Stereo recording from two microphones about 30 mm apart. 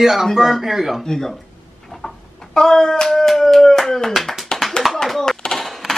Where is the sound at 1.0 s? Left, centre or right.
Left.